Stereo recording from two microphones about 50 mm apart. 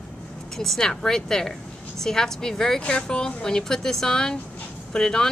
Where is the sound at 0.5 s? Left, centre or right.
Centre.